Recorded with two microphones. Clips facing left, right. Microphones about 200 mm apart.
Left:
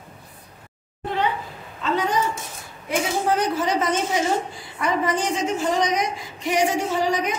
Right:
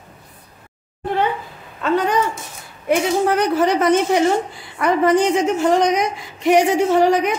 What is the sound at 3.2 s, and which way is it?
A woman's voice, 65° right (ahead or behind).